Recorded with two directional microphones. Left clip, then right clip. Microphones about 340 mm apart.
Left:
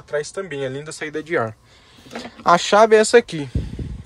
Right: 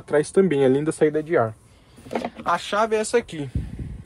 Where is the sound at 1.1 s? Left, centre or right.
Centre.